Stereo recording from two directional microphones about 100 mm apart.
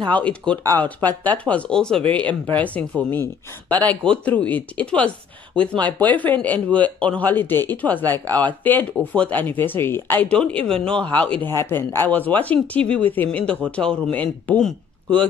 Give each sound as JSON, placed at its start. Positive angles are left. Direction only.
{"t": 0.1, "sound": "speech", "side_deg": 10}
{"t": 11.4, "sound": "speech", "side_deg": 25}